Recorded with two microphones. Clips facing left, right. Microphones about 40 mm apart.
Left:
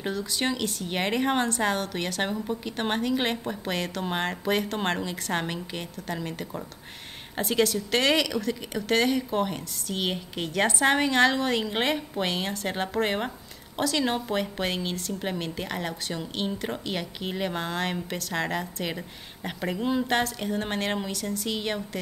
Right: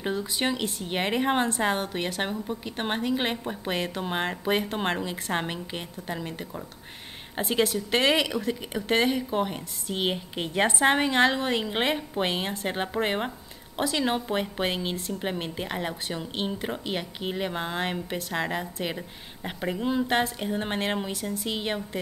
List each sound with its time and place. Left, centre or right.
0.1 s a woman's voice: right
2.2 s a woman's voice: centre
6.1 s speech: centre
7.3 s a woman's voice: centre
9.3 s a woman's voice: centre
9.8 s a woman's voice: centre